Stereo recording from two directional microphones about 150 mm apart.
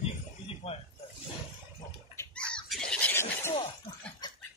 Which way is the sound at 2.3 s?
5° left (ahead or behind).